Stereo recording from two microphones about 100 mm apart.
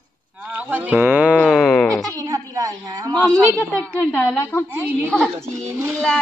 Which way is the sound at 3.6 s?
15° left (ahead or behind).